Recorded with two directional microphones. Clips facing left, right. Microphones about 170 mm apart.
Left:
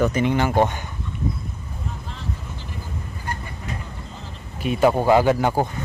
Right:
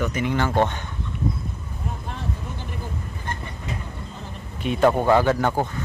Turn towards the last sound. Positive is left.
turn(degrees=15)  # may be behind; listen again after turning